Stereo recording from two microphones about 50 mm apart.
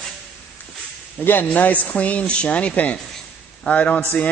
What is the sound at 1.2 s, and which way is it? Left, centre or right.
A man's voice, left.